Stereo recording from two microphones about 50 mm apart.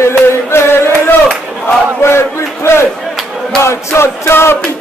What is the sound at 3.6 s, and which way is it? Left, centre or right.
Music, left.